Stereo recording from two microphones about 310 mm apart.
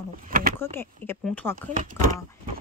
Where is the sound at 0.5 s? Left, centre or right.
Centre.